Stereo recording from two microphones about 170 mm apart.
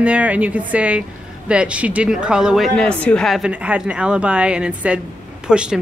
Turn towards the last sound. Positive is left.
turn(degrees=-5)  # may be behind; listen again after turning